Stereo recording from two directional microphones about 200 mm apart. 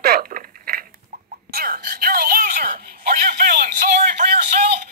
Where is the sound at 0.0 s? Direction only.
45° right (ahead or behind).